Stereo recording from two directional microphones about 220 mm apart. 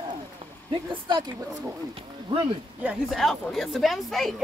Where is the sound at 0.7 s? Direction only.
20° right (ahead or behind).